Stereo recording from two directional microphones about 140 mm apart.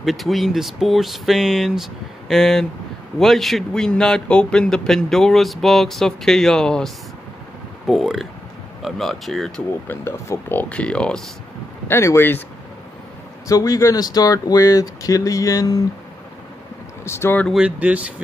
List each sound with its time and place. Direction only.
0.0 s a man's voice: centre (ahead or behind)
9.8 s speech: 20° left (ahead or behind)
11.9 s speech: 20° left (ahead or behind)
13.5 s speech: 25° left (ahead or behind)
17.0 s speech: 15° left (ahead or behind)
17.5 s speech: 5° right (ahead or behind)